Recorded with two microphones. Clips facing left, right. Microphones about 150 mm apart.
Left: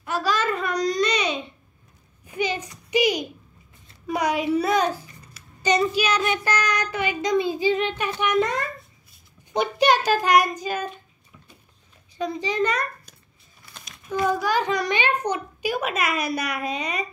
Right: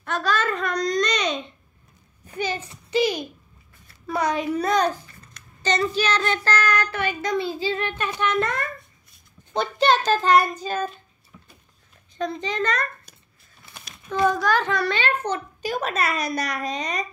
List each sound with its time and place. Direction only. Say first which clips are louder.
0.0 s a sound: even; 10° left (ahead or behind)
4.6 s child singing: even; 10° left (ahead or behind)
8.2 s a woman's voice: left 2 dB; 15° left (ahead or behind)
12.2 s a woman's voice: left 2 dB; 10° left (ahead or behind)
14.0 s a woman's voice: right 2 dB; 10° left (ahead or behind)